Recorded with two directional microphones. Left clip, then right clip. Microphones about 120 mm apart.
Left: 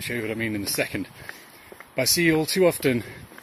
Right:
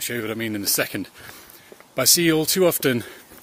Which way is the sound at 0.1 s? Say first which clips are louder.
Left 1 dB; 25° right (ahead or behind).